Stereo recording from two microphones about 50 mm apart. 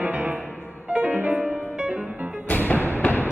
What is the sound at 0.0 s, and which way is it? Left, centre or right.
Music, right.